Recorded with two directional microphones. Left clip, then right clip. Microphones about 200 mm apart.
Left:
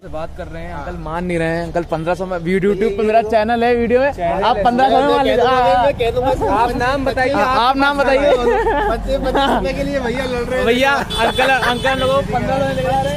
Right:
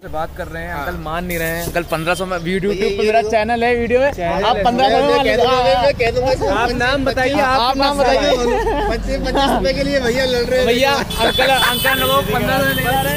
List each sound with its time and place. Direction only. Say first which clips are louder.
2.5 s speech: left 3 dB; 35° left (ahead or behind)
6.5 s speech: left 1 dB; 5° right (ahead or behind)
7.5 s speech: left 1 dB; 50° left (ahead or behind)
8.5 s speech: left 2 dB; 30° left (ahead or behind)
9.6 s speech: right 2 dB; 20° left (ahead or behind)
10.6 s speech: left 4 dB; 50° left (ahead or behind)